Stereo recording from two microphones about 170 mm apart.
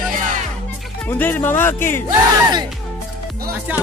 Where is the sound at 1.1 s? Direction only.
10° left (ahead or behind).